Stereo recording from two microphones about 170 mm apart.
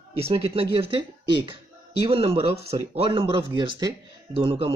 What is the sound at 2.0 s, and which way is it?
Speech, 35° right (ahead or behind).